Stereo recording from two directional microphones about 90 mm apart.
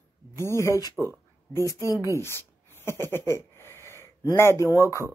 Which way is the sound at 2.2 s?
30° left (ahead or behind).